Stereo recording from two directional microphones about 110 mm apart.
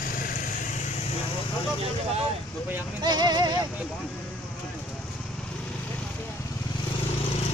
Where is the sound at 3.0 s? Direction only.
40° right (ahead or behind).